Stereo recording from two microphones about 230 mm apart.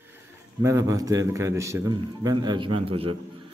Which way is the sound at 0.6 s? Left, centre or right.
Centre.